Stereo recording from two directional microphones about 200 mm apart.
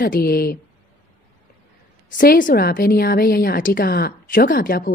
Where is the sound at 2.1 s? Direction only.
45° left (ahead or behind).